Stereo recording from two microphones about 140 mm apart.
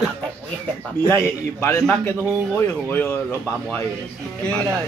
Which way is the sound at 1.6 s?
20° left (ahead or behind).